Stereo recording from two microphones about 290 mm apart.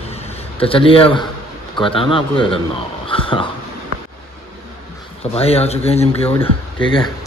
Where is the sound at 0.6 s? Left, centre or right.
Centre.